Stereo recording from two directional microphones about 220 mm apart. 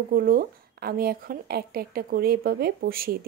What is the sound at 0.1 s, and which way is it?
Speech, 40° right (ahead or behind).